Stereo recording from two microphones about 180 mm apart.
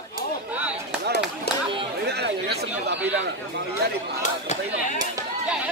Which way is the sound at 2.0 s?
65° right (ahead or behind).